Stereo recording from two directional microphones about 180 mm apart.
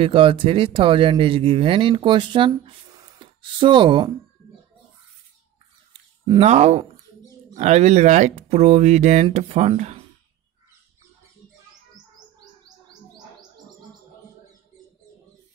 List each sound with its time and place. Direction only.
0.0 s speech: 30° right (ahead or behind)
6.2 s speech: 30° right (ahead or behind)